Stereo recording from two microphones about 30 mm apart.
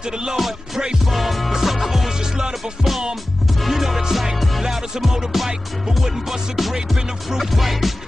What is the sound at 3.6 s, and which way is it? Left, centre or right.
Music, centre.